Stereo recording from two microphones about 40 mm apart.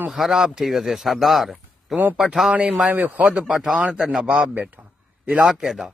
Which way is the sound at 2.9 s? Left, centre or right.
Right.